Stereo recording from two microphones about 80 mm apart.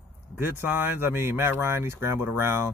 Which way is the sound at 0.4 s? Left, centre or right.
Right.